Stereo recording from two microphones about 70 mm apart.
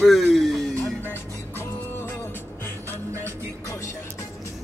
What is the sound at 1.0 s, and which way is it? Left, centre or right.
Music, left.